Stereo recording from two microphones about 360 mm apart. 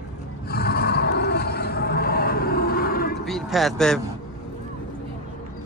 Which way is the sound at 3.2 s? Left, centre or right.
Centre.